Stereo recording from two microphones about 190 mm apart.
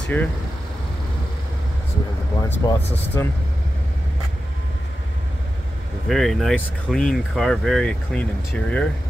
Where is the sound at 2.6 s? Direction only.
15° left (ahead or behind).